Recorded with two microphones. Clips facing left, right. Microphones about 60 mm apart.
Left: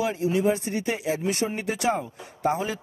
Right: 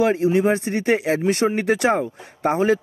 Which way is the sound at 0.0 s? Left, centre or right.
Right.